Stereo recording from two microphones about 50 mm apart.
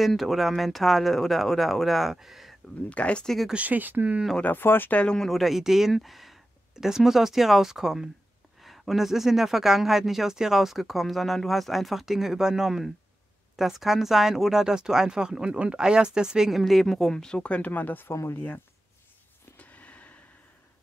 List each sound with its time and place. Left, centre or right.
0.0 s speech: centre
2.9 s speech: left
3.5 s speech: right
4.6 s speech: left
5.1 s speech: centre
5.4 s speech: centre
16.5 s speech: centre; by 18.1 s left
19.5 s a sound: left